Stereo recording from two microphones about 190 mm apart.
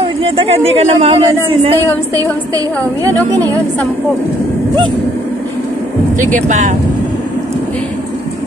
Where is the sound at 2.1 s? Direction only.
20° right (ahead or behind).